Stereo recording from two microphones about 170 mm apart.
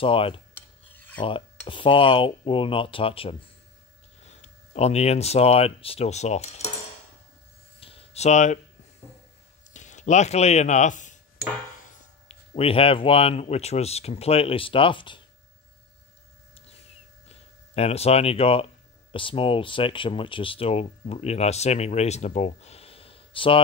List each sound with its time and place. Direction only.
0.0 s speech: 30° left (ahead or behind)
0.6 s filing: 10° left (ahead or behind)
1.7 s speech: 30° left (ahead or behind)
7.8 s a sound: 35° left (ahead or behind)
9.7 s speech: 45° left (ahead or behind)
12.3 s speech: 35° left (ahead or behind)
17.3 s speech: 35° left (ahead or behind)